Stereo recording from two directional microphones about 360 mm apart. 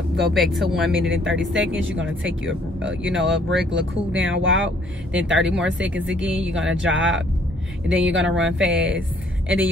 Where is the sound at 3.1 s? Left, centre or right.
Right.